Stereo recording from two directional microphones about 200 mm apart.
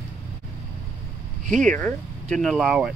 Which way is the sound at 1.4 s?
40° right (ahead or behind).